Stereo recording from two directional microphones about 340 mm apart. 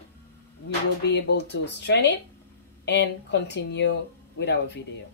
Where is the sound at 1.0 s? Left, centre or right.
Left.